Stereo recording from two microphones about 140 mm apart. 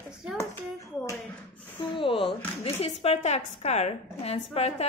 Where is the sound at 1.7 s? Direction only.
40° left (ahead or behind).